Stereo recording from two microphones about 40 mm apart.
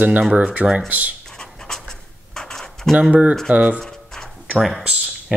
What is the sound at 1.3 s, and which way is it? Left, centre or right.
Writing, centre.